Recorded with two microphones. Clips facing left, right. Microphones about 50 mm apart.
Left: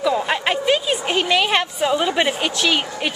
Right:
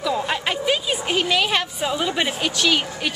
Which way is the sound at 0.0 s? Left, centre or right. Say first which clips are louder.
Left 3 dB; centre.